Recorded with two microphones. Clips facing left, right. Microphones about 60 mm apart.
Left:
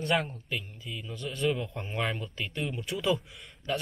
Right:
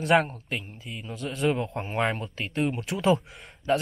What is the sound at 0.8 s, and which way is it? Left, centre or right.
Speech, right.